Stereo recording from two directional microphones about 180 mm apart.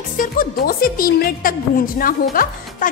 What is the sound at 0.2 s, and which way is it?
Speech, 50° left (ahead or behind).